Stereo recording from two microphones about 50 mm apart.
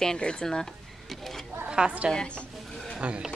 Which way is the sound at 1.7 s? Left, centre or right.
Centre.